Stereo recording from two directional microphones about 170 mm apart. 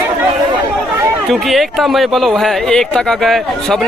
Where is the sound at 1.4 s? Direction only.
Centre (ahead or behind).